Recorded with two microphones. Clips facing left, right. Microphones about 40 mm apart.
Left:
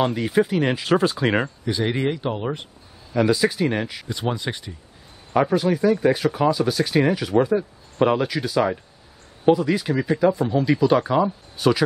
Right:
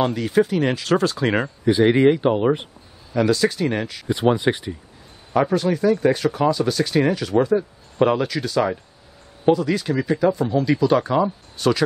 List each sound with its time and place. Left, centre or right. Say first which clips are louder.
0.0 s speech: right 1 dB; centre
1.6 s speech: right 8 dB; centre
3.1 s speech: right 1 dB; centre
4.1 s speech: right 10 dB; centre
5.3 s speech: even; centre